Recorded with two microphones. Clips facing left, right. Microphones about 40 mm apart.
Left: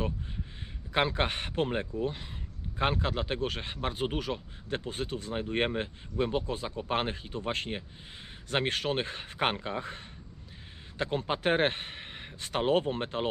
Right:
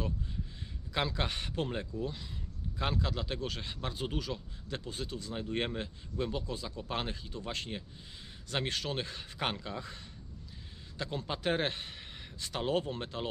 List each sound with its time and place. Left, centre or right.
0.9 s speech: left